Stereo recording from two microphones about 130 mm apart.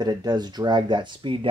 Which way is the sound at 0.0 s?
30° right (ahead or behind).